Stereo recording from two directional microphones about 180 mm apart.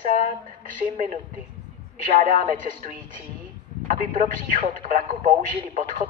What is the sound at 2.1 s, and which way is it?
A man's voice, 50° right (ahead or behind).